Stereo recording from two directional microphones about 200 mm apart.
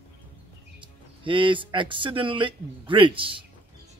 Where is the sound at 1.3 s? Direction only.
25° right (ahead or behind).